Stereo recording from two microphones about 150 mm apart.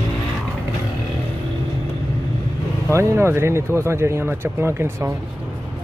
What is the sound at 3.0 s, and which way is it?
Speech, 15° right (ahead or behind).